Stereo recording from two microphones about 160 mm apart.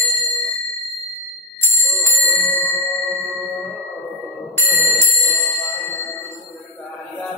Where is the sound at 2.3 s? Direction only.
10° left (ahead or behind).